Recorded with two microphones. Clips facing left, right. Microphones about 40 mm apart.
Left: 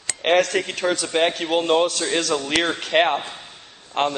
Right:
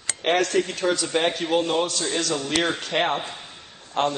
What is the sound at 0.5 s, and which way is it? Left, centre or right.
Speech, left.